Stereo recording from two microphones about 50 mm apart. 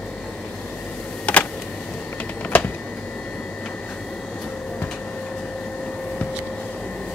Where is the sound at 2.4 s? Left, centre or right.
Left.